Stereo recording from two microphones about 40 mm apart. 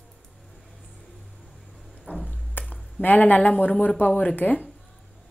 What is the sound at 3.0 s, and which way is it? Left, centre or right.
Speech, left.